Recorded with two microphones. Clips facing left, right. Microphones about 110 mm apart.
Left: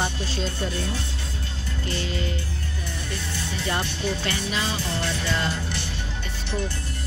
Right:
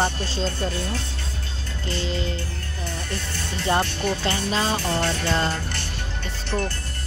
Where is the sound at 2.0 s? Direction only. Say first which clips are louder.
Right 4 dB; 25° right (ahead or behind).